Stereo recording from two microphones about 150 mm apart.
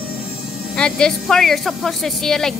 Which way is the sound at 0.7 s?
5° left (ahead or behind).